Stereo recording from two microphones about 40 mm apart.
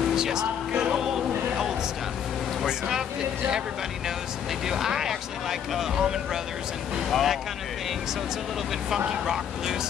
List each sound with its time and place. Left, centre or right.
0.1 s music: centre
4.6 s speech: centre
7.1 s speech: centre
9.1 s speech: centre